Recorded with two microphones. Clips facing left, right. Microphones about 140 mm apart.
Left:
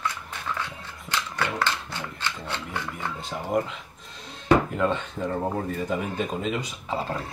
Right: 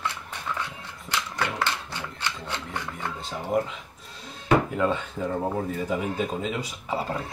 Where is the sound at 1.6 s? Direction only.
15° right (ahead or behind).